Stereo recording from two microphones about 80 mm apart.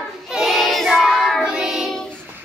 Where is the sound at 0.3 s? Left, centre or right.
Centre.